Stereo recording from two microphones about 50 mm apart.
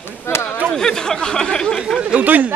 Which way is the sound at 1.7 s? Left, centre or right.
Centre.